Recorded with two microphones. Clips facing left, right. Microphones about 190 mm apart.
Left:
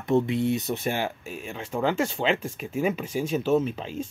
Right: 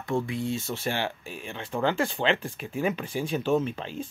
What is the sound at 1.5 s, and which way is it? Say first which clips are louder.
Speech: left 1 dB; 5° left (ahead or behind).